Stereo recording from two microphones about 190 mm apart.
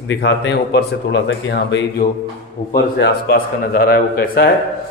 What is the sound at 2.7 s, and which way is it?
Speech, 55° left (ahead or behind).